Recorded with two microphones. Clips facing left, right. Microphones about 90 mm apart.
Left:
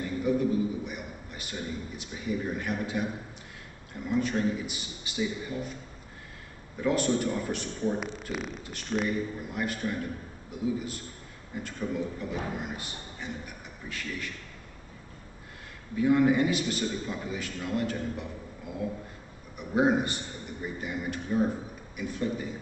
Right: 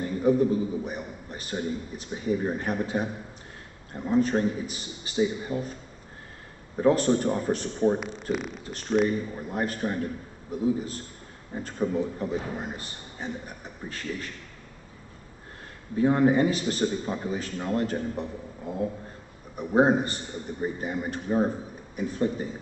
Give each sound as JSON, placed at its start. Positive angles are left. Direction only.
{"t": 0.0, "sound": "a man's voice", "side_deg": -35}
{"t": 6.8, "sound": "a man's voice", "side_deg": -35}
{"t": 8.0, "sound": "speech", "side_deg": 0}
{"t": 8.9, "sound": "a man's voice", "side_deg": -25}
{"t": 9.4, "sound": "a man's voice", "side_deg": -35}
{"t": 15.9, "sound": "a man's voice", "side_deg": -35}